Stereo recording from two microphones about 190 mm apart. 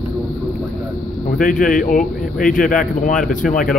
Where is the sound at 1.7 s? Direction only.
45° left (ahead or behind).